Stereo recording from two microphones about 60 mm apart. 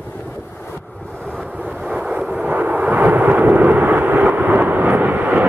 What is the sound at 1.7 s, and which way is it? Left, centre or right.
Vehicle, centre.